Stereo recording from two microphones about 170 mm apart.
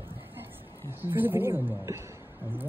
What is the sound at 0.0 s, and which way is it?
Speech, 10° right (ahead or behind).